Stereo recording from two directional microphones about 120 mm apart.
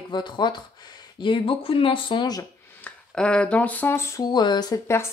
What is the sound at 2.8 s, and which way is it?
Speech, 10° left (ahead or behind).